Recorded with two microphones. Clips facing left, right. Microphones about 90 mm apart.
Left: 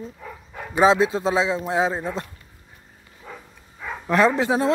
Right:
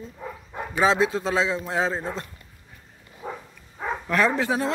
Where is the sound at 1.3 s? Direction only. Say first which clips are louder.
Left 3 dB; 15° left (ahead or behind).